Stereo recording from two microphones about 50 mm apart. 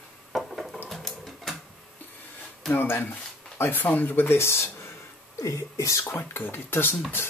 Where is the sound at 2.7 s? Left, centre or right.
Left.